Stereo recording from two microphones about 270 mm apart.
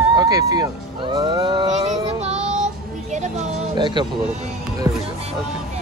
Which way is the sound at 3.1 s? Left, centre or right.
Right.